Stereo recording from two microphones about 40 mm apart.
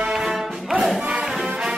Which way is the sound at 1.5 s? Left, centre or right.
Right.